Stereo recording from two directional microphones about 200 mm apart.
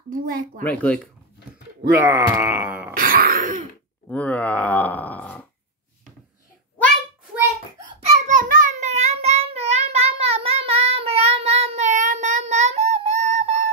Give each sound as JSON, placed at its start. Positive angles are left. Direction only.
{"t": 0.1, "sound": "speech", "side_deg": -45}
{"t": 0.6, "sound": "speech", "side_deg": 5}
{"t": 2.0, "sound": "speech", "side_deg": -10}
{"t": 3.0, "sound": "throat clearing", "side_deg": -45}
{"t": 4.1, "sound": "speech", "side_deg": 5}
{"t": 8.3, "sound": "child singing", "side_deg": -40}